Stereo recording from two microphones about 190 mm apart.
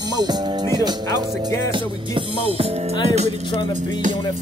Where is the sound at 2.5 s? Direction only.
30° right (ahead or behind).